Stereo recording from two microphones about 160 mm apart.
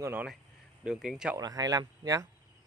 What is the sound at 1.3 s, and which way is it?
Speech, 20° right (ahead or behind).